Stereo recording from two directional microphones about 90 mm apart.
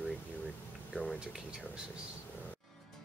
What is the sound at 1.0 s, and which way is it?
Speech, 20° left (ahead or behind).